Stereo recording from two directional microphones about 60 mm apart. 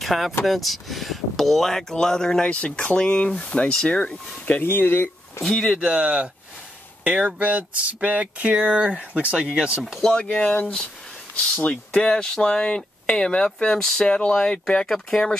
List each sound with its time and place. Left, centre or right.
0.0 s speech: centre
4.6 s speech: left
5.4 s speech: centre
5.7 s speech: centre
10.2 s speech: left